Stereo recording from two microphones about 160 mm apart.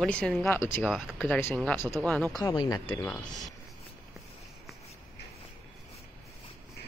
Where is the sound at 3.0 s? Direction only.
10° left (ahead or behind).